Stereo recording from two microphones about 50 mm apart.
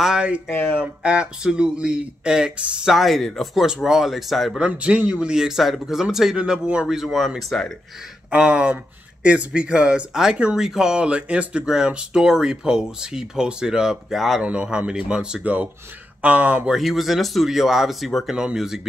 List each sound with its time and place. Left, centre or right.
0.5 s speech: left
0.7 s speech: right
2.9 s speech: centre
4.6 s speech: right
7.1 s speech: centre
8.3 s speech: right
11.0 s speech: right
14.1 s speech: centre
14.4 s speech: right
15.4 s speech: right
16.7 s speech: centre
18.3 s speech: centre